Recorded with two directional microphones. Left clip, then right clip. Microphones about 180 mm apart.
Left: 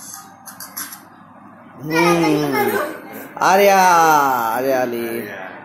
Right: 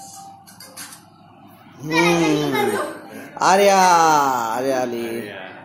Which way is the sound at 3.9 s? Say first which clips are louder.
Left 2 dB; 20° right (ahead or behind).